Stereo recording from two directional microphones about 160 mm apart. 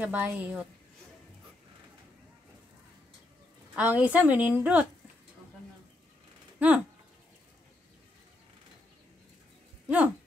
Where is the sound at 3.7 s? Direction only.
10° right (ahead or behind).